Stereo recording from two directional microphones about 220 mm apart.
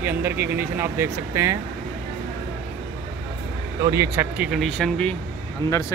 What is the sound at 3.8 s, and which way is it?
Speech, 15° right (ahead or behind).